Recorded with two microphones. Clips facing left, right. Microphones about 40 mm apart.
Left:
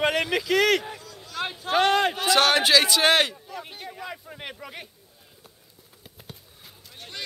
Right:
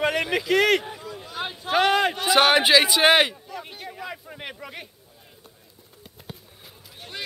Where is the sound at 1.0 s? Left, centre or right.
Right.